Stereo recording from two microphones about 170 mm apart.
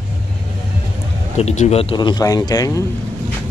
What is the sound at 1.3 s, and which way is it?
Speech, 40° left (ahead or behind).